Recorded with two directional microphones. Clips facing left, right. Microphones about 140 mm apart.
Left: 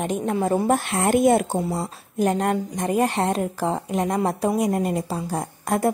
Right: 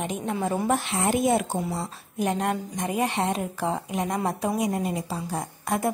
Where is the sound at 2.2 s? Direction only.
45° left (ahead or behind).